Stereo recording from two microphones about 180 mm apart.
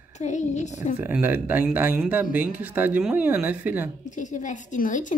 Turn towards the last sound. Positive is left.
turn(degrees=45)  # may be behind; listen again after turning